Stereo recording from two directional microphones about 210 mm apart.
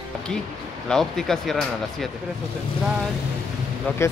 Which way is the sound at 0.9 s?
Centre (ahead or behind).